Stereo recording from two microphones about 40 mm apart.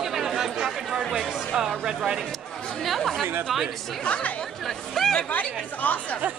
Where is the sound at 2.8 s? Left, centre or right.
Centre.